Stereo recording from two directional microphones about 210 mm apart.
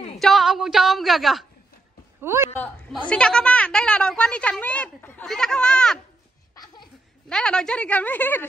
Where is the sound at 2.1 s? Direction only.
10° right (ahead or behind).